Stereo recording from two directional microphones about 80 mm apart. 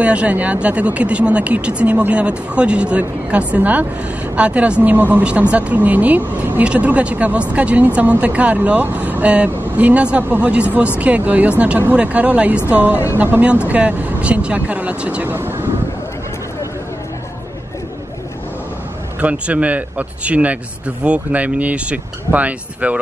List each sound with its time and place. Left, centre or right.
0.0 s speech: centre
15.3 s speech: right
19.2 s speech: centre